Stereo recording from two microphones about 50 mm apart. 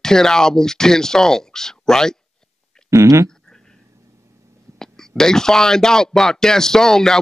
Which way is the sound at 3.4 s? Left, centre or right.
Centre.